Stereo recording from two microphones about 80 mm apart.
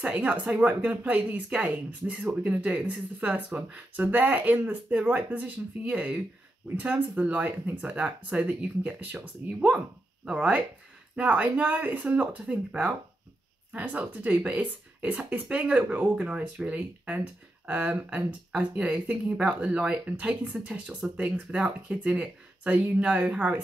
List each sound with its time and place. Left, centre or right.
0.1 s speech: centre